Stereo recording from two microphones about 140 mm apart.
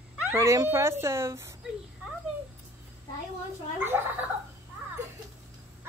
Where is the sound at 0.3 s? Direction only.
20° right (ahead or behind).